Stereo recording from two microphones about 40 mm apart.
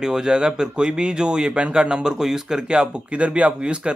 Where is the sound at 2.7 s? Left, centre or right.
Right.